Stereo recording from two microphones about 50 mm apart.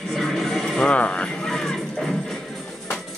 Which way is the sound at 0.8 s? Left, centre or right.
Left.